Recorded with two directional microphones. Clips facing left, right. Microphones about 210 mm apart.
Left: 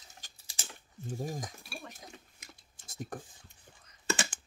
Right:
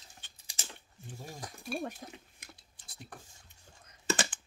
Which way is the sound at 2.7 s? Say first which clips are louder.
Left 10 dB; 45° left (ahead or behind).